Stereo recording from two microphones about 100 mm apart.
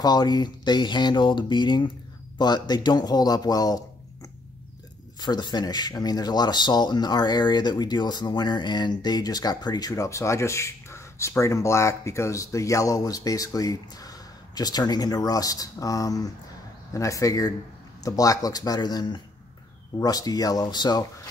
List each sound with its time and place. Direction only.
0.0 s speech: 45° left (ahead or behind)
5.2 s speech: 45° left (ahead or behind)